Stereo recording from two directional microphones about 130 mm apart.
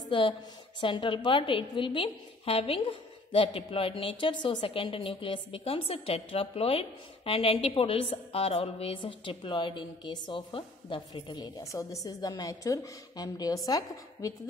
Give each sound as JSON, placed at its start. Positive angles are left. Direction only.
{"t": 0.7, "sound": "a woman's voice", "side_deg": 40}